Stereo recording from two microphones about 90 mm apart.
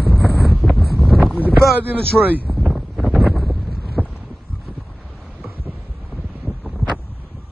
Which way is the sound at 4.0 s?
15° right (ahead or behind).